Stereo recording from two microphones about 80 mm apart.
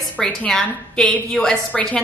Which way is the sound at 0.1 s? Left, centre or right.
Centre.